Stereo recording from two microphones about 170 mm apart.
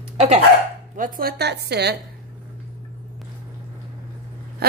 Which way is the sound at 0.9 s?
55° right (ahead or behind).